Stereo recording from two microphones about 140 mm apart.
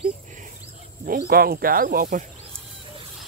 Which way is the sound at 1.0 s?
90° right.